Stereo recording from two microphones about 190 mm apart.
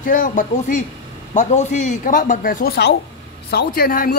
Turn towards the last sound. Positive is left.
turn(degrees=45)  # may be behind; listen again after turning